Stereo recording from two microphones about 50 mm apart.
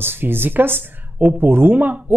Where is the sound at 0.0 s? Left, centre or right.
Right.